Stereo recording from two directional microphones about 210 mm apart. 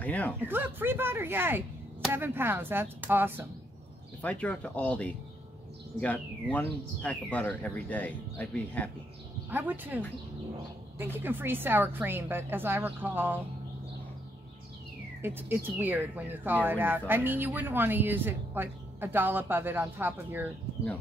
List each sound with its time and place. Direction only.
0.0 s speech: 10° left (ahead or behind)
0.4 s speech: 10° right (ahead or behind)
4.2 s speech: 5° left (ahead or behind)
9.5 s speech: 10° right (ahead or behind)
15.2 s speech: 10° right (ahead or behind)